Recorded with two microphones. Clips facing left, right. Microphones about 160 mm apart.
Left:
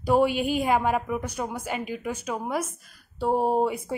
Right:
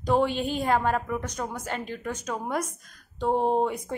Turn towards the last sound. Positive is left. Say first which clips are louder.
# left 1 dB
turn(degrees=5)  # may be behind; listen again after turning